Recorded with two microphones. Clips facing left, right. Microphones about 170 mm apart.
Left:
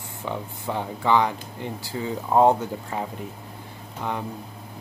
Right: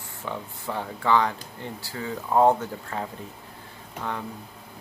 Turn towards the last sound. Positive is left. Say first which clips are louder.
# left 3 dB
turn(degrees=15)  # may be behind; listen again after turning